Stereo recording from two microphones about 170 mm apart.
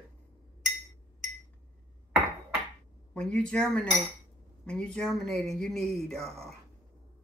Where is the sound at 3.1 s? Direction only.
5° left (ahead or behind).